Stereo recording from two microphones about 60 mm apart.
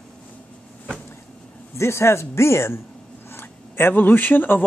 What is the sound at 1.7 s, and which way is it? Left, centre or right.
Speech, left.